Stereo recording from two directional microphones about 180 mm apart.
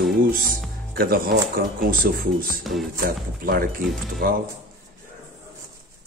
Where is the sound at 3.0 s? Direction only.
55° right (ahead or behind).